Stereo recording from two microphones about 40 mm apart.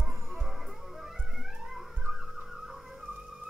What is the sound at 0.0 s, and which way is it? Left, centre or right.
Music, centre.